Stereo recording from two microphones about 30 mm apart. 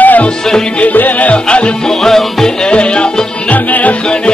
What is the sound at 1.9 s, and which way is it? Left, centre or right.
Music, centre.